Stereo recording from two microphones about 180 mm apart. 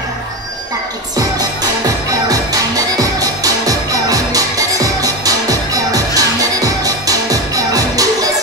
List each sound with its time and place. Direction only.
2.2 s music: 20° right (ahead or behind)